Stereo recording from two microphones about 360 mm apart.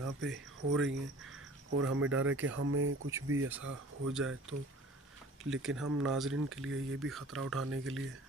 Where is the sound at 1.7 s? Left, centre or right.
Right.